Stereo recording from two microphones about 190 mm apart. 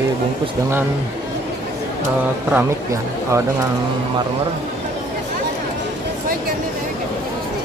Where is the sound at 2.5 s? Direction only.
15° right (ahead or behind).